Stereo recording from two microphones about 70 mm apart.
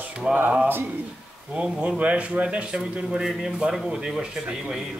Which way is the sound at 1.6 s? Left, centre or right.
Centre.